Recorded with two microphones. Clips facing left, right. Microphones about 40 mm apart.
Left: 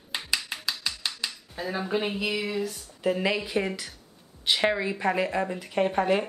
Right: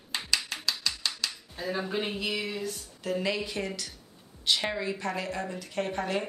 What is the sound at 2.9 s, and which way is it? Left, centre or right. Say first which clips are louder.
A woman's voice: left 5 dB; left.